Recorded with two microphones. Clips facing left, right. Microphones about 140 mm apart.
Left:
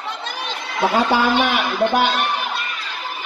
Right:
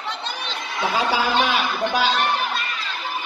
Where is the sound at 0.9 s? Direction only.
55° left (ahead or behind).